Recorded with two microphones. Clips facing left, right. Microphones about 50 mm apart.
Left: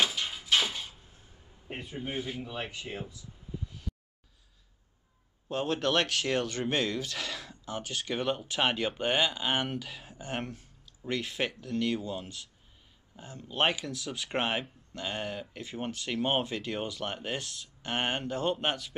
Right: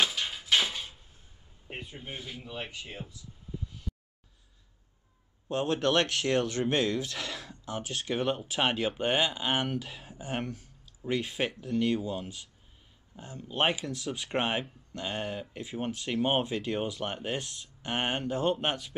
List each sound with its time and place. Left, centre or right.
0.0 s a sound: centre
1.7 s speech: centre
2.0 s speech: centre
2.6 s speech: centre
5.5 s speech: centre